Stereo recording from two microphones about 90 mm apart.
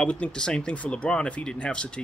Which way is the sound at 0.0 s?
10° left (ahead or behind).